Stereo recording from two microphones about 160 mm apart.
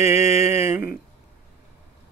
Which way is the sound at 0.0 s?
15° right (ahead or behind).